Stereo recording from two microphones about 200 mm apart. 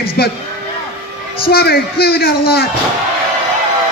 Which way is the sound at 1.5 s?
50° left (ahead or behind).